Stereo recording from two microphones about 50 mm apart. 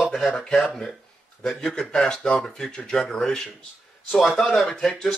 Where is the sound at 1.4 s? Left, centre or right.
Centre.